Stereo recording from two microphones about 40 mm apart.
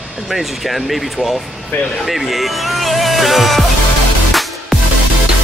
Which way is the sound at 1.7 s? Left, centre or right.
Left.